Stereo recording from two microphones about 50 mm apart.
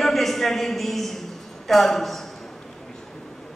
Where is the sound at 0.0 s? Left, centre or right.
Centre.